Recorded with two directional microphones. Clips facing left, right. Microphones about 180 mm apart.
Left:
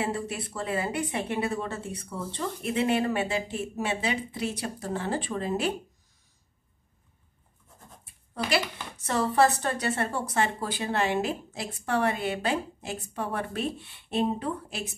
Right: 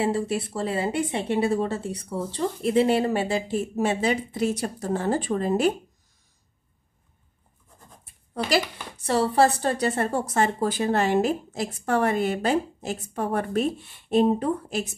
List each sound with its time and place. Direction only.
0.0 s speech: 30° right (ahead or behind)
8.5 s speech: 35° right (ahead or behind)